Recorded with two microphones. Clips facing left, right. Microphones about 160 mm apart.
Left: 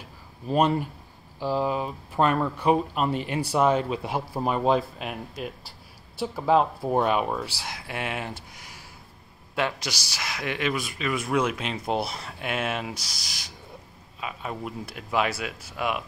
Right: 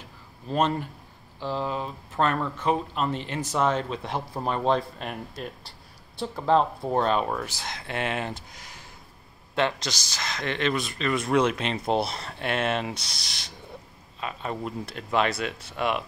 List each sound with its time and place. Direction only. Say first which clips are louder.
0.5 s speech: left 3 dB; 10° left (ahead or behind)
8.5 s a sound: even; 10° left (ahead or behind)
9.6 s speech: right 2 dB; 10° left (ahead or behind)